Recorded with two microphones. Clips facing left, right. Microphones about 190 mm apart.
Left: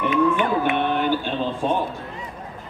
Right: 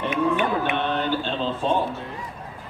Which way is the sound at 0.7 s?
15° left (ahead or behind).